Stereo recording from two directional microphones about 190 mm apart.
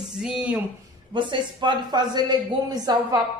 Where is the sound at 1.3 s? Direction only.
25° right (ahead or behind).